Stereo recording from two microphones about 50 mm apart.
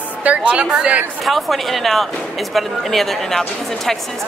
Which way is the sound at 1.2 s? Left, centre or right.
Centre.